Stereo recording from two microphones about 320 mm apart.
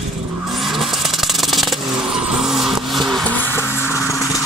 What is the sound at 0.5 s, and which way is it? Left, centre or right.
Vehicle, centre.